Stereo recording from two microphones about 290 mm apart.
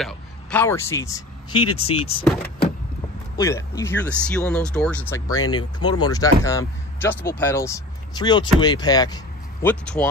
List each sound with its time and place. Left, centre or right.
0.0 s speech: centre
3.3 s speech: centre